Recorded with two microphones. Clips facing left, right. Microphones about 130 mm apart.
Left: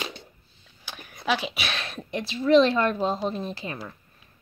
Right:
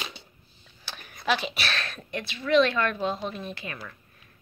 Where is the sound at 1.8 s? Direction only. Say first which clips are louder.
Left 3 dB; 20° left (ahead or behind).